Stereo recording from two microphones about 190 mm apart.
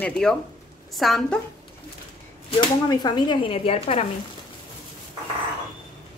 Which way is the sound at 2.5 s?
20° left (ahead or behind).